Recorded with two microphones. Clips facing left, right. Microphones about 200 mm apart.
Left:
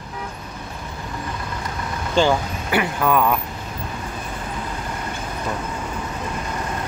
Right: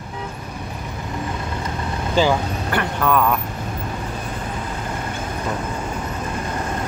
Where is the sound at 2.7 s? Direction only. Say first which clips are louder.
Left 1 dB; 5° left (ahead or behind).